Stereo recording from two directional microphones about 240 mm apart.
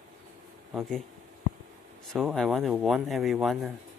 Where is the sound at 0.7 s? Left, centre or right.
Centre.